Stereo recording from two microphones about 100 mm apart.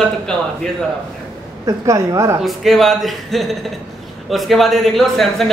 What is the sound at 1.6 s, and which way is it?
Speech, 35° right (ahead or behind).